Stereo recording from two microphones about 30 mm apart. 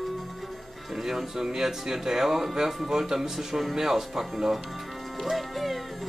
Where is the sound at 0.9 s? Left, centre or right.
Centre.